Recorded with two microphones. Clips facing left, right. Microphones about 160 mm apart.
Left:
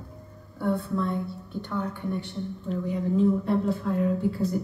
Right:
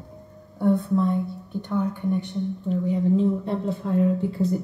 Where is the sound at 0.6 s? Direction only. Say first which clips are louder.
Right 6 dB; 20° right (ahead or behind).